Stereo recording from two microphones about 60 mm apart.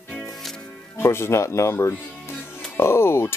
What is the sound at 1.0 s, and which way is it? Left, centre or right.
Speech, left.